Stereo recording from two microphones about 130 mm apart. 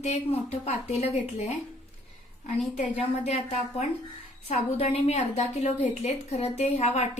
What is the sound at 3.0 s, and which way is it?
A woman's voice, 55° left (ahead or behind).